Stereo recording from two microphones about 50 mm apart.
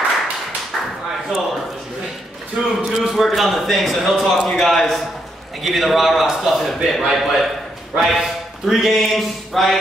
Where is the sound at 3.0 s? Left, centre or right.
Centre.